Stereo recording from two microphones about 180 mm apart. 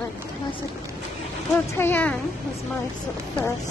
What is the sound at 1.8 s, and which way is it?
Speech, 10° left (ahead or behind).